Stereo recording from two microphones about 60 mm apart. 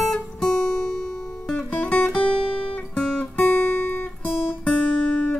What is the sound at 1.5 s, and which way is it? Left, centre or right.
Music, left.